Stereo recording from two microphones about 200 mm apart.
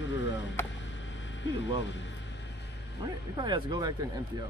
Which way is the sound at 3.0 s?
20° right (ahead or behind).